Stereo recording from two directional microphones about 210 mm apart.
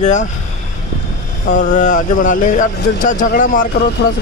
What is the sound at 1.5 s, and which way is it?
Speech, 35° left (ahead or behind).